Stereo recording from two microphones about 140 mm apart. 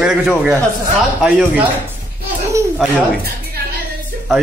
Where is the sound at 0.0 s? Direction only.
5° right (ahead or behind).